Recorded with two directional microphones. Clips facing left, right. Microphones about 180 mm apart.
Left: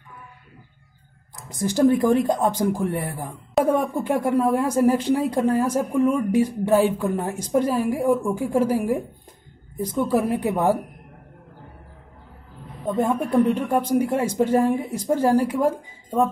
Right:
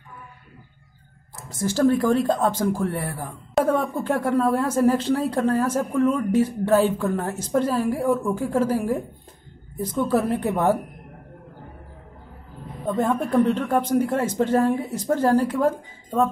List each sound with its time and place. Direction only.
1.3 s a woman's voice: 15° left (ahead or behind)
12.8 s a woman's voice: 10° left (ahead or behind)